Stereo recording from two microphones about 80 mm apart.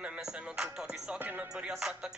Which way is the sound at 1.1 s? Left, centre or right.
Right.